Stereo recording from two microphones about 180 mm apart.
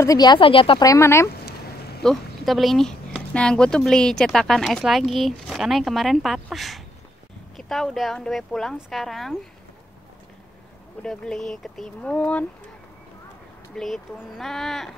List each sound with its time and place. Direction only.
0.0 s speech: 20° left (ahead or behind)
1.4 s a sound: 60° left (ahead or behind)
2.0 s speech: centre (ahead or behind)
11.0 s speech: 5° left (ahead or behind)
13.7 s speech: centre (ahead or behind)